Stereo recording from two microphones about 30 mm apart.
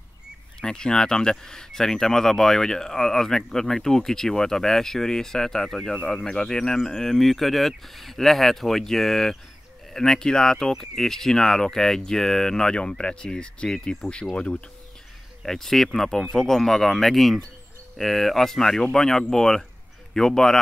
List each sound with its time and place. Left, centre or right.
0.6 s speech: left
12.7 s speech: left
15.4 s speech: centre